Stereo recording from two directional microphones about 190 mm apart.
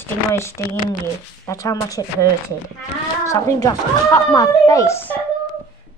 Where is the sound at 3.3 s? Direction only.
15° left (ahead or behind).